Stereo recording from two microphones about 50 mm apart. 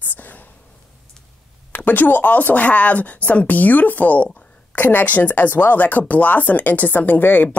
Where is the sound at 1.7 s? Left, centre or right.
Left.